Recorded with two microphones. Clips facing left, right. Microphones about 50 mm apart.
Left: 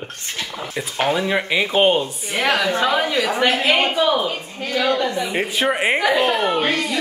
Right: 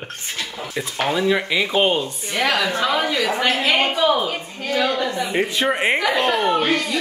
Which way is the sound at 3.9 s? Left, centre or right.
Centre.